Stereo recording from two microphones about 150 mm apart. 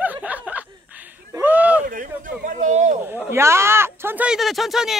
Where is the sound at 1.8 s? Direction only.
65° right (ahead or behind).